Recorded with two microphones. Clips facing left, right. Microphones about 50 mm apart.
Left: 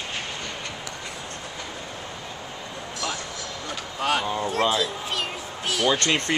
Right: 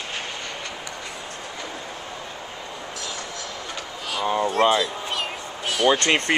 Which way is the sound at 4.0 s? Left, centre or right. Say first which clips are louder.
Left 5 dB; left.